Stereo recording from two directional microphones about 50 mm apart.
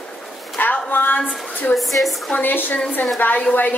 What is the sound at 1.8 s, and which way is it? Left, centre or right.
Speech, centre.